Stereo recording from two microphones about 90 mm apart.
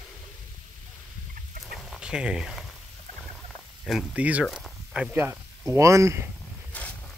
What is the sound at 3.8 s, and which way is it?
Speech, centre (ahead or behind).